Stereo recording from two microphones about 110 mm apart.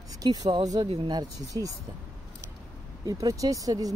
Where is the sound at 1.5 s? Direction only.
40° right (ahead or behind).